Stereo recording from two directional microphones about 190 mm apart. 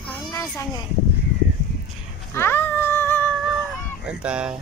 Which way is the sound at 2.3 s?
10° left (ahead or behind).